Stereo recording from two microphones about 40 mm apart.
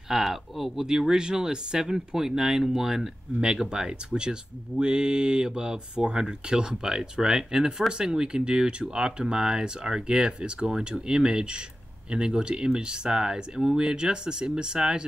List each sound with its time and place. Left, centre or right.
0.1 s speech: centre